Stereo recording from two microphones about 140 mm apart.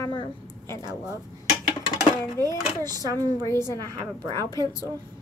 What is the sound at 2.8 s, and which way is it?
Child singing, 25° right (ahead or behind).